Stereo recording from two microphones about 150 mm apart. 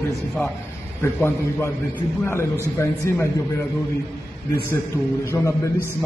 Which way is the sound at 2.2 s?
20° left (ahead or behind).